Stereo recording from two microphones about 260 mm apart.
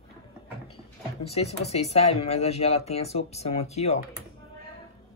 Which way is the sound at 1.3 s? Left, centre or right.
Left.